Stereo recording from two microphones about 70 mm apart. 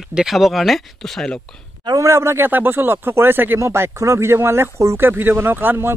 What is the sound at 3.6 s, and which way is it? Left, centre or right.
Speech, right.